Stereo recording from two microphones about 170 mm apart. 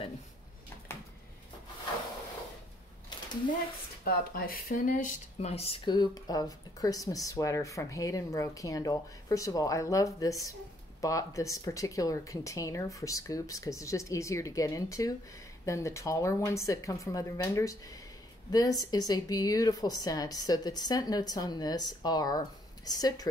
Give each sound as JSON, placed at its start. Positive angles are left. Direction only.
{"t": 4.0, "sound": "speech", "side_deg": 60}